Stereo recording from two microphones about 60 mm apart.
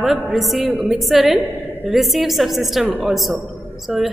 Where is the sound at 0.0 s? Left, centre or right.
Centre.